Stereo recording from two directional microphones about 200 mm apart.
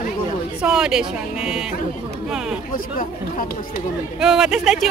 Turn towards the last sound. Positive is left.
turn(degrees=-5)  # may be behind; listen again after turning